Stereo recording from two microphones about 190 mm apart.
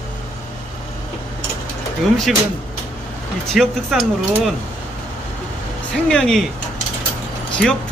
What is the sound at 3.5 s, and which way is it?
Speech, centre (ahead or behind).